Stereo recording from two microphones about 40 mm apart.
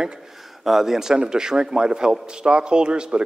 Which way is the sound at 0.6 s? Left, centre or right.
Centre.